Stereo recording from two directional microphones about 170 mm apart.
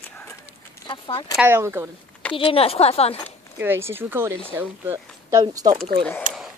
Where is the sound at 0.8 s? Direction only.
30° left (ahead or behind).